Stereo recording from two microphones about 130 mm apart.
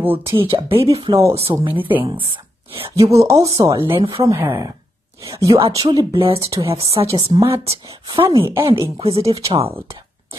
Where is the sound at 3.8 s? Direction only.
40° right (ahead or behind).